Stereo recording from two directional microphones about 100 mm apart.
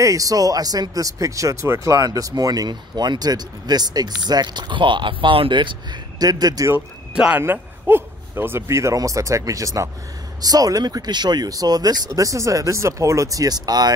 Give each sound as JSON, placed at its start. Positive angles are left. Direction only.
{"t": 0.0, "sound": "speech", "side_deg": -35}
{"t": 7.2, "sound": "a man's voice", "side_deg": -10}
{"t": 7.4, "sound": "speech", "side_deg": -20}